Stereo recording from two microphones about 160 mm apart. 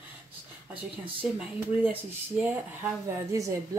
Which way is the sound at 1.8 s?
10° right (ahead or behind).